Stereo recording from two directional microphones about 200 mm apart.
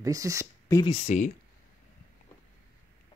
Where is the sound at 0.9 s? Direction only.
35° left (ahead or behind).